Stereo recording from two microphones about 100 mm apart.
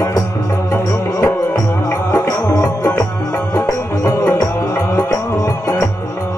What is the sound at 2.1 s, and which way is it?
Music, 30° left (ahead or behind).